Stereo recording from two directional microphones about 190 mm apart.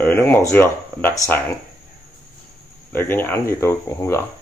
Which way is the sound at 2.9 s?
10° left (ahead or behind).